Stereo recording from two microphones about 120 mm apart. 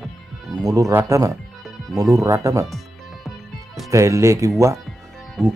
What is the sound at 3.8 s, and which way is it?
Speech, 25° right (ahead or behind).